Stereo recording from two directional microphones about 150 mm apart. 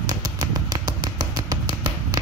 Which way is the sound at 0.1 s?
25° right (ahead or behind).